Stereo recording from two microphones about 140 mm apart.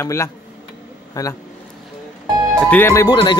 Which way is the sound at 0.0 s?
20° left (ahead or behind).